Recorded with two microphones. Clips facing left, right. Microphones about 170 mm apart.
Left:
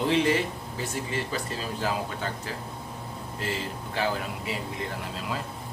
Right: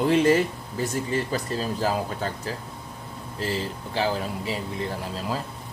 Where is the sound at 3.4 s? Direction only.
35° right (ahead or behind).